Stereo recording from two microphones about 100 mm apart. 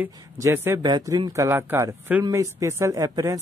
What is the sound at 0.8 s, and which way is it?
Speech, 40° right (ahead or behind).